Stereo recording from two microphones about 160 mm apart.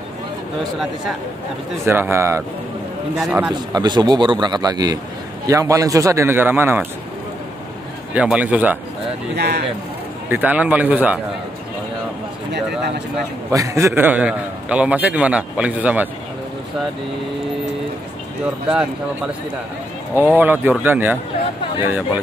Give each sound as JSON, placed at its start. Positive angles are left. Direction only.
{"t": 1.9, "sound": "a man's voice", "side_deg": -15}
{"t": 3.2, "sound": "a man's voice", "side_deg": -5}
{"t": 3.7, "sound": "a man's voice", "side_deg": -25}
{"t": 8.1, "sound": "a man's voice", "side_deg": -10}
{"t": 9.3, "sound": "speech", "side_deg": -90}
{"t": 10.3, "sound": "a man's voice", "side_deg": -10}
{"t": 13.5, "sound": "a man's voice", "side_deg": -20}
{"t": 20.2, "sound": "a man's voice", "side_deg": -10}